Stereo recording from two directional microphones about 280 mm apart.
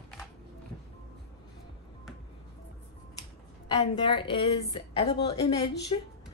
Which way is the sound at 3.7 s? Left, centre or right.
Centre.